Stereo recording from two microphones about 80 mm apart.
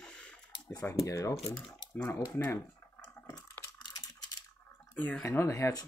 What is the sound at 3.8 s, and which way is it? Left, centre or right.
Typing, left.